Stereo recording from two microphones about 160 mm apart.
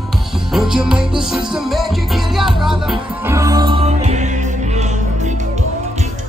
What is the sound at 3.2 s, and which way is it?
Music, 20° right (ahead or behind).